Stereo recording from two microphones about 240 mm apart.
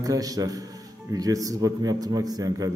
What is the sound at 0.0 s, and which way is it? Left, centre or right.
A man's voice, centre.